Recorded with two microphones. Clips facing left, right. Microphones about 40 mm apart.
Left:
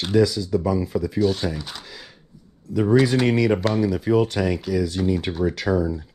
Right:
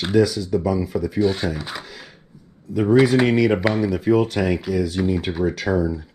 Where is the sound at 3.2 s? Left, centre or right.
Right.